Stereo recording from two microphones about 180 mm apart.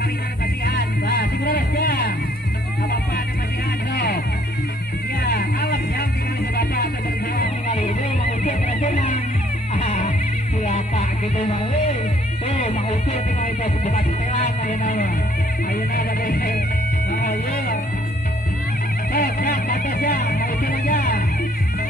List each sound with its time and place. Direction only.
0.7 s music: 65° left (ahead or behind)
3.9 s music: 60° left (ahead or behind)
5.2 s music: 60° left (ahead or behind)
7.7 s music: 35° left (ahead or behind)
15.9 s music: 55° left (ahead or behind)
19.1 s vehicle: 50° left (ahead or behind)
20.3 s music: 60° left (ahead or behind)